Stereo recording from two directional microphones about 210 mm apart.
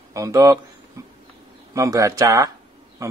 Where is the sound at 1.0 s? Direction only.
15° right (ahead or behind).